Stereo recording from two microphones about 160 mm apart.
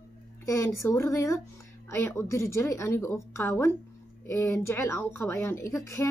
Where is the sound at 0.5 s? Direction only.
20° left (ahead or behind).